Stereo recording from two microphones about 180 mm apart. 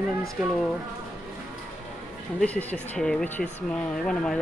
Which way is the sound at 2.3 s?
10° left (ahead or behind).